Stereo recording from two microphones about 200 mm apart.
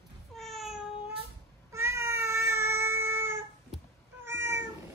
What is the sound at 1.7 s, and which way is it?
Cat, 15° right (ahead or behind).